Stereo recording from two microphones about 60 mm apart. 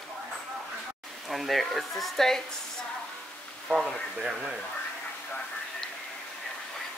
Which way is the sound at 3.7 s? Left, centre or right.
Centre.